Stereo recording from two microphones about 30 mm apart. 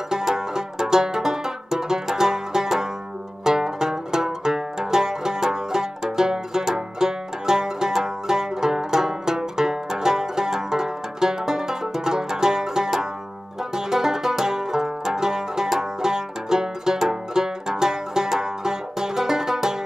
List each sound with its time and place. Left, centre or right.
0.1 s banjo: right
3.4 s music: centre
13.7 s banjo: centre